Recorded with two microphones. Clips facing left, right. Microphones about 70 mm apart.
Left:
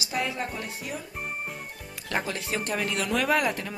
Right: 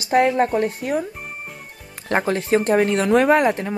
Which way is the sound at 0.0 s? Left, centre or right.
Right.